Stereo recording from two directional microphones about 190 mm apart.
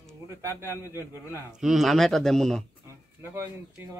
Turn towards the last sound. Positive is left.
turn(degrees=-10)  # may be behind; listen again after turning